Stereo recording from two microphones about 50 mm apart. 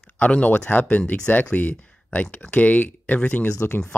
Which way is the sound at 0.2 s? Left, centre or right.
Left.